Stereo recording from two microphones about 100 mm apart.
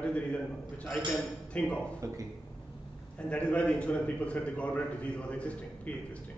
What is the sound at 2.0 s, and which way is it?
Speech, 30° right (ahead or behind).